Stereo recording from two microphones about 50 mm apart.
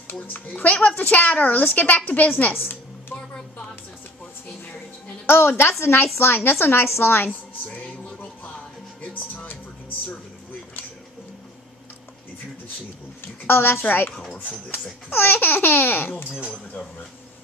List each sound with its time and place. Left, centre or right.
0.1 s a child's voice: left
2.5 s a sound: left
5.2 s a woman's voice: left
8.0 s music: left
13.5 s speech: left